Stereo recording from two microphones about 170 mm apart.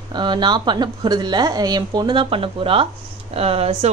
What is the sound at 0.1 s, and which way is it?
A woman's voice, 25° right (ahead or behind).